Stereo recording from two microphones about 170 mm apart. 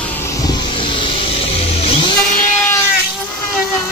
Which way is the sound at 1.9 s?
30° left (ahead or behind).